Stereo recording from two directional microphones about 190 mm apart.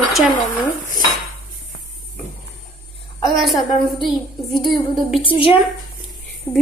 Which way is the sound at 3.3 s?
Centre (ahead or behind).